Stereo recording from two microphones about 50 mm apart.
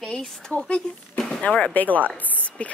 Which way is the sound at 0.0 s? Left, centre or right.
Centre.